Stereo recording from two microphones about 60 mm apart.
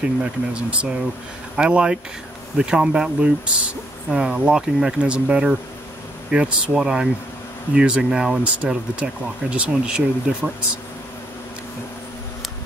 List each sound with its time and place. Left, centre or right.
0.0 s speech: centre